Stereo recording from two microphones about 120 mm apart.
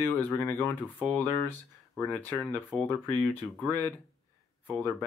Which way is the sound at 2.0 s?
15° left (ahead or behind).